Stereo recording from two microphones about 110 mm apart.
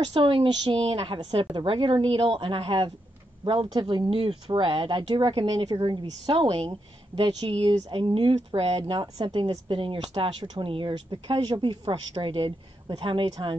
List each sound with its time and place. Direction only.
0.0 s a woman's voice: 50° right (ahead or behind)
5.7 s a woman's voice: 40° right (ahead or behind)
6.3 s speech: 60° right (ahead or behind)
7.2 s a woman's voice: 45° right (ahead or behind)